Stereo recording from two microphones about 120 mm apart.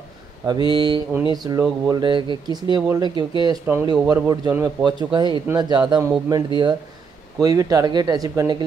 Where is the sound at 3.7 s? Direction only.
20° right (ahead or behind).